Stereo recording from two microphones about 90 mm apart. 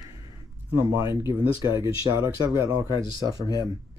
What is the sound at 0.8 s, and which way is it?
Speech, 35° right (ahead or behind).